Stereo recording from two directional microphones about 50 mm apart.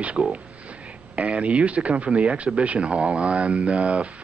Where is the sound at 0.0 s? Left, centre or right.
Right.